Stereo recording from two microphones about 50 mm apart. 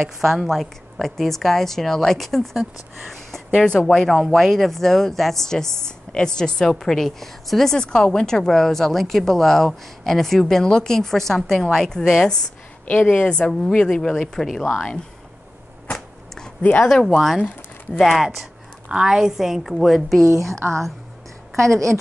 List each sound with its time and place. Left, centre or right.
0.2 s a woman's voice: centre
0.5 s a woman's voice: centre
12.8 s speech: left
13.2 s speech: centre
16.8 s a woman's voice: centre
20.6 s a woman's voice: right
21.5 s speech: centre